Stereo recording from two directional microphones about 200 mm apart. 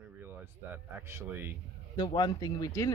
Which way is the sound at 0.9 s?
10° right (ahead or behind).